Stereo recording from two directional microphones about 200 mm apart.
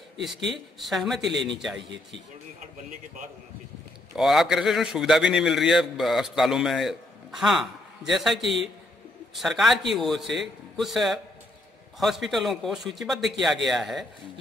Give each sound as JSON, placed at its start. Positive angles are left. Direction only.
{"t": 0.5, "sound": "a man's voice", "side_deg": 0}
{"t": 4.1, "sound": "a man's voice", "side_deg": 0}